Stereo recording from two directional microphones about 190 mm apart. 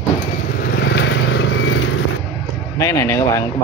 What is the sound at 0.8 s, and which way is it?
Vehicle, 65° left (ahead or behind).